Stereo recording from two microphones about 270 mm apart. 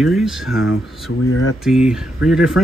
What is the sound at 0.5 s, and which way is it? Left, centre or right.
Speech, left.